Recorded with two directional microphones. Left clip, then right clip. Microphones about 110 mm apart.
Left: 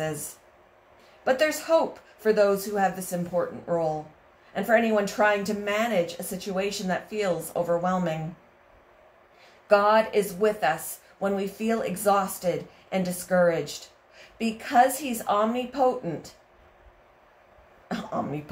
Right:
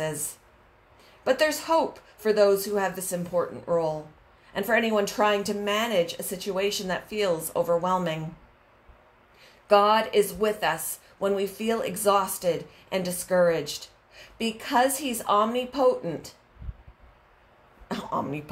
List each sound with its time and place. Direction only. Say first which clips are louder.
1.2 s speech: even; 35° right (ahead or behind)
9.7 s speech: even; 35° right (ahead or behind)
17.8 s speech: right 1 dB; 35° right (ahead or behind)